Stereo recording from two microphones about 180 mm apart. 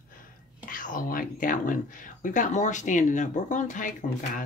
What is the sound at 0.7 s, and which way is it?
Speech, 50° left (ahead or behind).